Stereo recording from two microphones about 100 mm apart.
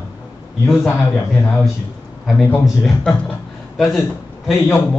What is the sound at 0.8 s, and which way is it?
Speech, 10° left (ahead or behind).